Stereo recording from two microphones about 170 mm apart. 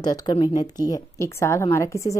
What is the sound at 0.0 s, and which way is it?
A woman's voice, 25° left (ahead or behind).